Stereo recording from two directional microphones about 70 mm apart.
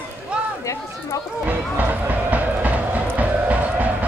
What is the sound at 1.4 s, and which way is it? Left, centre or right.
Music, right.